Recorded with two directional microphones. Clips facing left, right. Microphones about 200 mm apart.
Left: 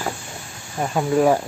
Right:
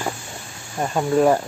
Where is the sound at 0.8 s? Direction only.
Centre (ahead or behind).